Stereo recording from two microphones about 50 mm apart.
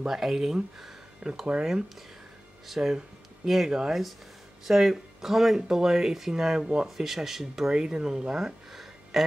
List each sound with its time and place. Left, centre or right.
0.0 s speech: centre
2.6 s speech: centre
7.1 s speech: centre